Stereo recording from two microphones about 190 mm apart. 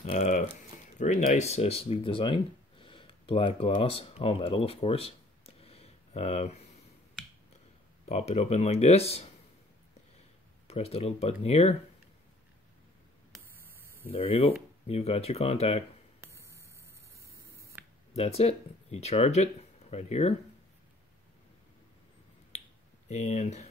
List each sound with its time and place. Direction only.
0.0 s a sound: 35° left (ahead or behind)
0.9 s speech: 40° left (ahead or behind)
5.6 s a sound: 30° left (ahead or behind)
8.1 s speech: 35° left (ahead or behind)
10.7 s speech: 35° left (ahead or behind)
14.1 s speech: 30° left (ahead or behind)
16.2 s a sound: 15° right (ahead or behind)
18.1 s speech: 30° left (ahead or behind)
23.0 s speech: 35° left (ahead or behind)